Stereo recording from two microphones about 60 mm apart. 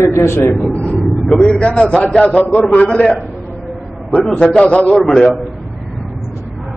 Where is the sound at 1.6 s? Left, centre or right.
Centre.